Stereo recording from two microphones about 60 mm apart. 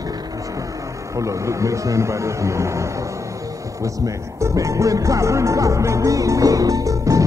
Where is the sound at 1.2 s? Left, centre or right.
Right.